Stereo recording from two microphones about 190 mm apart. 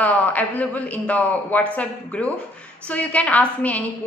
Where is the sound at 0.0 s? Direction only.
10° left (ahead or behind).